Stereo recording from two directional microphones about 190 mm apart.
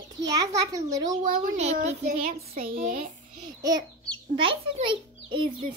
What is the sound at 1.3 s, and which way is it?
A child's voice, 40° right (ahead or behind).